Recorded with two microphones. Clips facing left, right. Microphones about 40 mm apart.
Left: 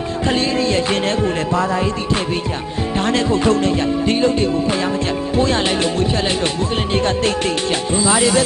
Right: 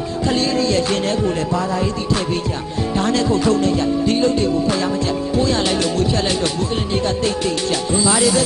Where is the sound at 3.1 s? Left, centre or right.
Left.